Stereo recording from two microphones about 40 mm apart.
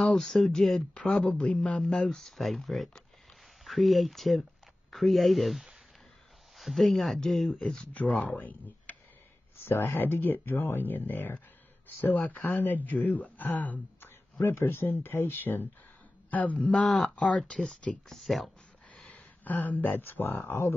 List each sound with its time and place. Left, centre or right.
0.0 s speech: centre
0.9 s speech: left
2.0 s speech: centre
7.5 s speech: left
7.9 s speech: left
9.6 s speech: left
14.4 s speech: left
14.9 s speech: left
16.3 s speech: left
17.5 s speech: left
18.0 s speech: centre
19.1 s speech: left
20.0 s speech: left